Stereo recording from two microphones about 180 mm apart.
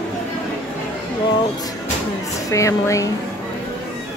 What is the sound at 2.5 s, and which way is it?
Speech, 15° left (ahead or behind).